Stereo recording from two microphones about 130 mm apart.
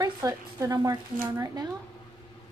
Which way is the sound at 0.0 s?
25° right (ahead or behind).